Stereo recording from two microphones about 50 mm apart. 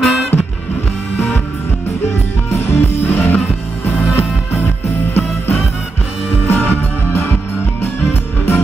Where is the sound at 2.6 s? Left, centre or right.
Left.